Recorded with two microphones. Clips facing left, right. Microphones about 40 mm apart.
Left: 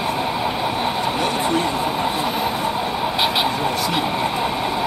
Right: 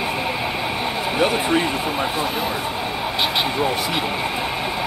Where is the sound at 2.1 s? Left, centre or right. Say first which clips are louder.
Left 1 dB; centre.